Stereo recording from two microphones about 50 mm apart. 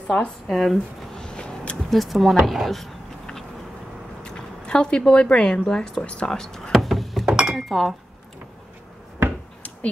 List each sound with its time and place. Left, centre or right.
0.5 s speech: centre
1.1 s a sound: centre
1.9 s speech: centre
4.2 s zipper: centre
5.7 s speech: centre
7.2 s chink: centre
7.5 s speech: centre